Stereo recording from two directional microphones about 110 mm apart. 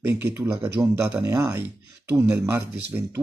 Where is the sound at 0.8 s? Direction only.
40° right (ahead or behind).